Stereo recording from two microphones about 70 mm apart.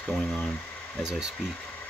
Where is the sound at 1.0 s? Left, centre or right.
Centre.